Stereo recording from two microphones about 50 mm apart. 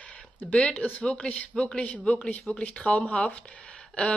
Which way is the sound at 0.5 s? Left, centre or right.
Left.